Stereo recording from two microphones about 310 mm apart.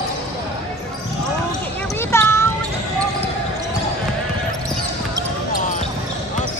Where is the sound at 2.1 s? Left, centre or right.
Centre.